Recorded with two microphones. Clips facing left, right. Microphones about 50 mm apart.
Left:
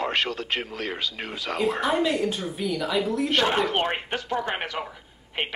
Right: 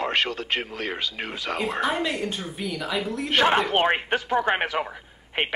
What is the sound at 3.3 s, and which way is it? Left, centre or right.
Speech, centre.